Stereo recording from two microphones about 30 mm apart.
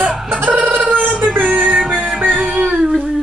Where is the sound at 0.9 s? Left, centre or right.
Centre.